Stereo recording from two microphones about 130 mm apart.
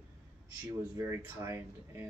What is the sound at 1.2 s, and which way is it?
Speech, 20° right (ahead or behind).